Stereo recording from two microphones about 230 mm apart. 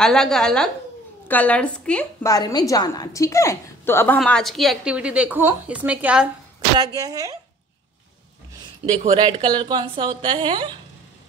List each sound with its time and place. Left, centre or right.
0.0 s a woman's voice: centre
9.1 s a woman's voice: right